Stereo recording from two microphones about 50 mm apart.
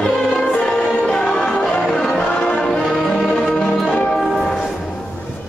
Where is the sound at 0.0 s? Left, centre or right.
Centre.